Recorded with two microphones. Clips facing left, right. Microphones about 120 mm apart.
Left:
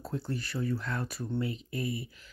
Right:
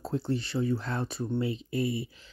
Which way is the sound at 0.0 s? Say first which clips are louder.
Right 5 dB; 25° right (ahead or behind).